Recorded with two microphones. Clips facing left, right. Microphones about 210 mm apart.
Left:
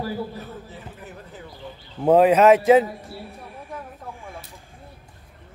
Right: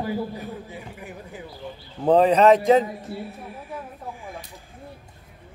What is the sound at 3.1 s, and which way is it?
Speech, 20° right (ahead or behind).